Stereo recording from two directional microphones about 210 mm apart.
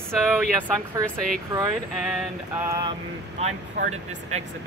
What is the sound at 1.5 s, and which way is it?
Speech, 15° right (ahead or behind).